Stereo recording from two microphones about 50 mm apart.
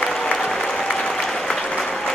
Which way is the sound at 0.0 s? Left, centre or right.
Centre.